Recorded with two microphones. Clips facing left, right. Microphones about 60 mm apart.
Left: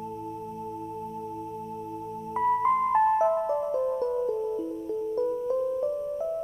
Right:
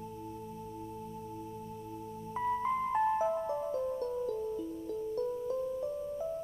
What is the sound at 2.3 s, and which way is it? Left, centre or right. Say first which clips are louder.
Music: left 9 dB; left.